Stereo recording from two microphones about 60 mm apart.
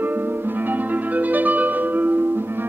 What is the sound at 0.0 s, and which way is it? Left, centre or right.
Music, right.